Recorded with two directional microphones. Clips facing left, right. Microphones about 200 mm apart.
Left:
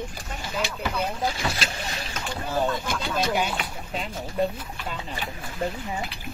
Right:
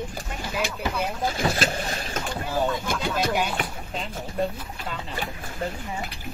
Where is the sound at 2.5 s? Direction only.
5° right (ahead or behind).